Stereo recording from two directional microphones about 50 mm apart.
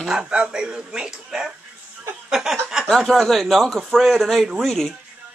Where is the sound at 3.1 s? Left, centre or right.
Centre.